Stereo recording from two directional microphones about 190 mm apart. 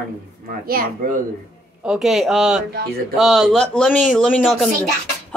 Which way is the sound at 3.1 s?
Centre (ahead or behind).